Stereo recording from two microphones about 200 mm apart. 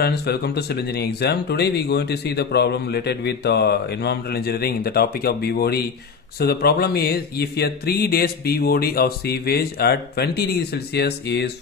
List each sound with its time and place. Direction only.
0.0 s speech: 55° left (ahead or behind)